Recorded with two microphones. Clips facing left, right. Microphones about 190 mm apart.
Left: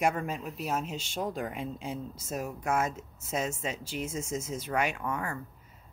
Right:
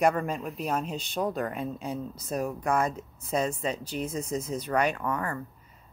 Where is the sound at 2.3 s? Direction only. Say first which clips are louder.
Right 3 dB; 5° left (ahead or behind).